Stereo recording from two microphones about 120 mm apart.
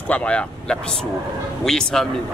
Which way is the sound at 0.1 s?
10° left (ahead or behind).